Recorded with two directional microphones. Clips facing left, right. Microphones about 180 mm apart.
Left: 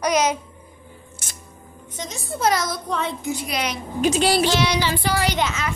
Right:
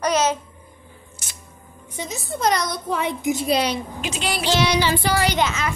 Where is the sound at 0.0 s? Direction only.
10° left (ahead or behind).